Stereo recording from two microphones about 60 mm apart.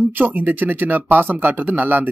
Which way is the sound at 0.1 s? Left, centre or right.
Right.